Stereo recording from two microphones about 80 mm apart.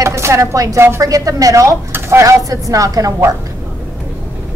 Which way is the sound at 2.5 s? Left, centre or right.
Right.